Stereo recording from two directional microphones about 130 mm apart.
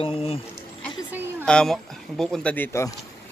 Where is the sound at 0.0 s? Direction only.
45° left (ahead or behind).